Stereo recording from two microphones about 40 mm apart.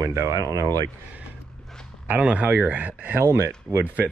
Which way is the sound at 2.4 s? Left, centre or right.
Right.